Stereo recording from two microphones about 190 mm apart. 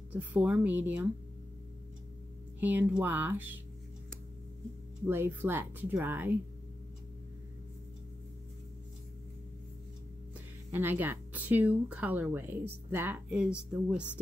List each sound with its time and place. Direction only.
0.1 s speech: 10° right (ahead or behind)
2.6 s speech: 10° right (ahead or behind)
5.0 s speech: 10° right (ahead or behind)
10.7 s speech: 10° right (ahead or behind)